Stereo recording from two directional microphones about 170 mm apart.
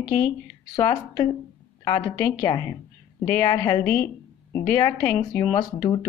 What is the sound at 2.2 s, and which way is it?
Speech, 10° left (ahead or behind).